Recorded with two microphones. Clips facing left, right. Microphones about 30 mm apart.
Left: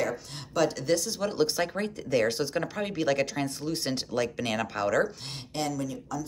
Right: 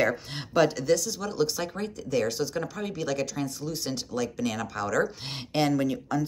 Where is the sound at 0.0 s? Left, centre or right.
Right.